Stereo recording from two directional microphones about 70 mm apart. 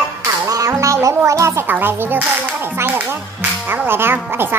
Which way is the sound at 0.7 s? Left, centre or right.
Right.